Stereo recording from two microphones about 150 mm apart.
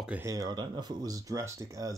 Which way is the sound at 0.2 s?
25° right (ahead or behind).